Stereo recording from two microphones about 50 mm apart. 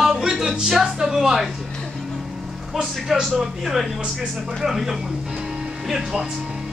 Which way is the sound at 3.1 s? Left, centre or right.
Centre.